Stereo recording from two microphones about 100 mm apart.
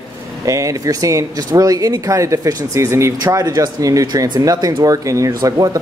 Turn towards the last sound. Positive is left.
turn(degrees=-35)  # may be behind; listen again after turning